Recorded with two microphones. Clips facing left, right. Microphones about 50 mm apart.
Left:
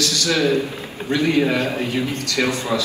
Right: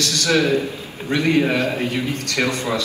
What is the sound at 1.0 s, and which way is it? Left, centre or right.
A man's voice, right.